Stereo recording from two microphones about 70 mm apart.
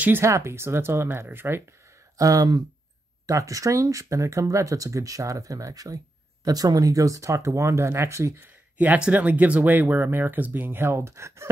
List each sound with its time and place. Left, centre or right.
0.2 s speech: right
2.1 s speech: right
3.3 s speech: right
8.4 s speech: right